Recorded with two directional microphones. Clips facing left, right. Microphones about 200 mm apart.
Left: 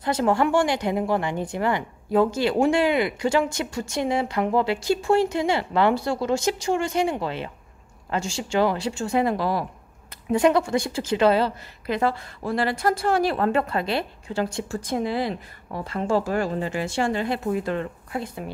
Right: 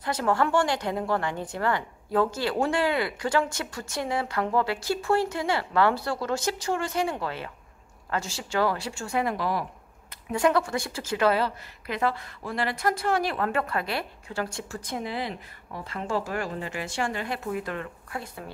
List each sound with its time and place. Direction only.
0.0 s a woman's voice: 25° left (ahead or behind)
10.6 s a woman's voice: 20° left (ahead or behind)